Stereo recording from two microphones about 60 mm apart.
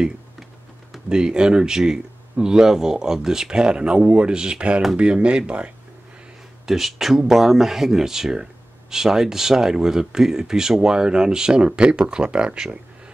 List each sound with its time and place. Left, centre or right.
1.0 s speech: centre
6.6 s speech: centre